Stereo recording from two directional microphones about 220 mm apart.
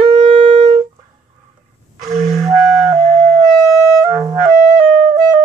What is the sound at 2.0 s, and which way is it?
Music, 30° right (ahead or behind).